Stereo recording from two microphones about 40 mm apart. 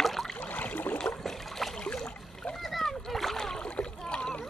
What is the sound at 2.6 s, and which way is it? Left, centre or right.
Splash, centre.